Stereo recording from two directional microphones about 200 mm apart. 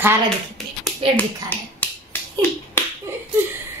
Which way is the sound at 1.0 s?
25° right (ahead or behind).